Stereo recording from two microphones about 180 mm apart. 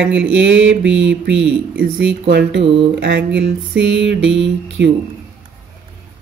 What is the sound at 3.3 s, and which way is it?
Music, 80° right.